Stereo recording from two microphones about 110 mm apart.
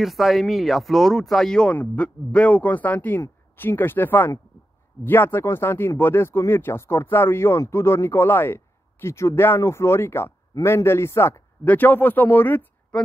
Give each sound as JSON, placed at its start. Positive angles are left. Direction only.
{"t": 0.0, "sound": "speech", "side_deg": 0}